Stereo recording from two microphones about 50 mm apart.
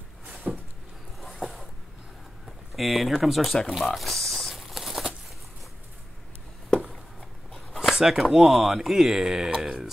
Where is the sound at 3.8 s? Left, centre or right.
Centre.